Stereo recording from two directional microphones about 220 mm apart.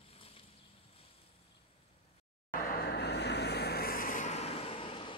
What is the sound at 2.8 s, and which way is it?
Vehicle, 50° left (ahead or behind).